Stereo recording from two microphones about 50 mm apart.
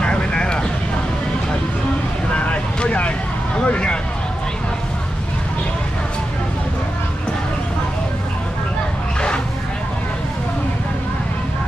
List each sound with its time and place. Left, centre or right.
0.0 s vehicle: centre
2.3 s vehicle: left
3.5 s a sound: left